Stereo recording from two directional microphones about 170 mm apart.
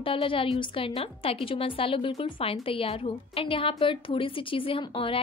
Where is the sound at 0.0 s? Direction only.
30° left (ahead or behind).